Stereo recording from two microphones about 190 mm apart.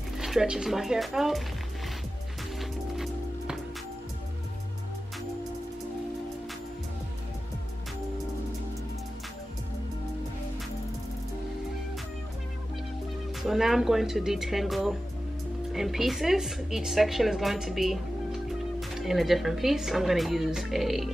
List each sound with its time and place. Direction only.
0.2 s a woman's voice: centre (ahead or behind)
13.4 s a woman's voice: centre (ahead or behind)